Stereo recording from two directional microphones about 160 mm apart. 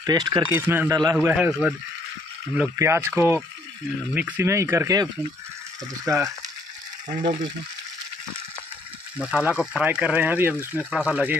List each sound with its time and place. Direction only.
0.0 s speech: 25° right (ahead or behind)
0.5 s speech: 15° right (ahead or behind)
9.2 s speech: 5° right (ahead or behind)